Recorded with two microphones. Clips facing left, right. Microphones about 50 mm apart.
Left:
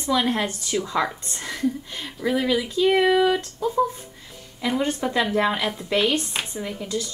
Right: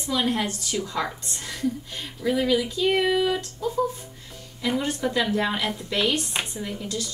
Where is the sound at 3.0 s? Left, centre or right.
Centre.